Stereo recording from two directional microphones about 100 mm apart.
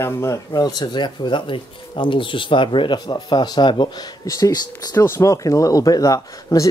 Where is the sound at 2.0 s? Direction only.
55° left (ahead or behind).